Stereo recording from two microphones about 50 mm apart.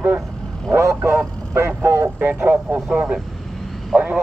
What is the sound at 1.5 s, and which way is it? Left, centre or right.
Speech, right.